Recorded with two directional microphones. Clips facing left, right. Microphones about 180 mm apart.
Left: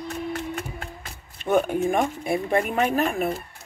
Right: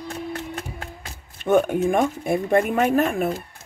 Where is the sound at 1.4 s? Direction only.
50° right (ahead or behind).